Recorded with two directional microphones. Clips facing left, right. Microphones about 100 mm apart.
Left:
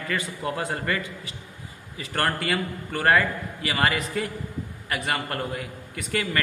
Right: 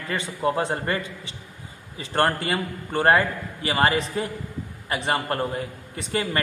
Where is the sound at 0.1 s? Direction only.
30° right (ahead or behind).